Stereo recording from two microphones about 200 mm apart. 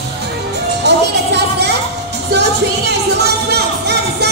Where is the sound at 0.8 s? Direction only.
55° right (ahead or behind).